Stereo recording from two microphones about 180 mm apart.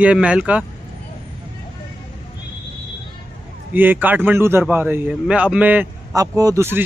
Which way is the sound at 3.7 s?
10° right (ahead or behind).